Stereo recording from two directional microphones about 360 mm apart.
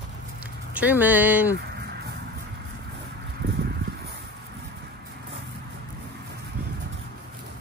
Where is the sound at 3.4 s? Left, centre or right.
Right.